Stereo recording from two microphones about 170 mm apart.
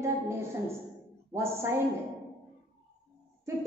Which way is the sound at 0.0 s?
15° right (ahead or behind).